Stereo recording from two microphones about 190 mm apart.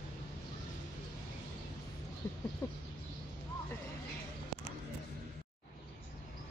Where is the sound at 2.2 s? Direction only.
15° left (ahead or behind).